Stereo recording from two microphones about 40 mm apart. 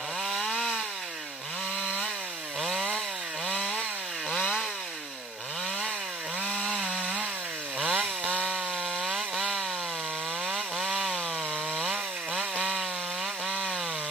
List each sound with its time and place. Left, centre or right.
0.2 s chainsaw: centre
2.6 s chainsaw: centre
3.4 s chainsaw: left
6.4 s chainsaw: left
6.7 s chainsaw: centre
7.8 s chainsaw: right
10.4 s chainsaw: centre
13.5 s chainsaw: centre